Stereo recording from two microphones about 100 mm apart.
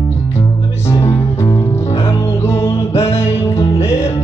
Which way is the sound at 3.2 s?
25° left (ahead or behind).